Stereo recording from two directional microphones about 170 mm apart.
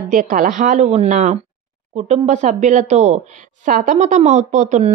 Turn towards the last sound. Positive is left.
turn(degrees=-45)  # may be behind; listen again after turning